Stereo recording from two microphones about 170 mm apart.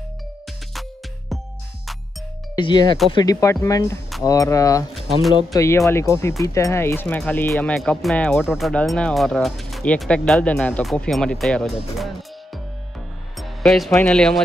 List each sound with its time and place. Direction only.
2.5 s speech: 25° left (ahead or behind); by 12.1 s centre (ahead or behind)
13.4 s music: centre (ahead or behind)
14.0 s speech: 5° left (ahead or behind)